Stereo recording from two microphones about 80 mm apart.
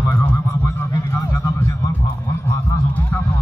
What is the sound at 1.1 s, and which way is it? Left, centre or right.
Music, left.